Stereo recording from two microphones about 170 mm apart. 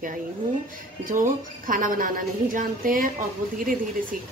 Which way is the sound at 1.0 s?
50° right (ahead or behind).